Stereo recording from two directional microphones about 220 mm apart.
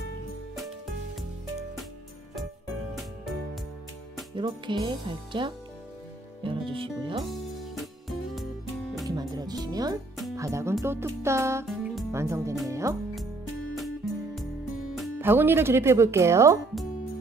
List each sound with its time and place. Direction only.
4.4 s speech: 20° right (ahead or behind)
7.2 s music: centre (ahead or behind)
9.1 s music: 15° right (ahead or behind)
10.3 s speech: 15° right (ahead or behind)
11.6 s music: centre (ahead or behind)
12.1 s speech: 15° right (ahead or behind)
13.7 s music: centre (ahead or behind)
15.0 s speech: 10° right (ahead or behind)